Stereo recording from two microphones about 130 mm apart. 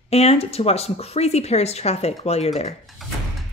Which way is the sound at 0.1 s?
50° left (ahead or behind).